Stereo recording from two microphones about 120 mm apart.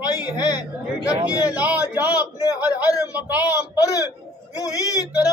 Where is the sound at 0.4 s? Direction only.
35° left (ahead or behind).